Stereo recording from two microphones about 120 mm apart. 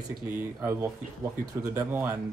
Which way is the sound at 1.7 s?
15° right (ahead or behind).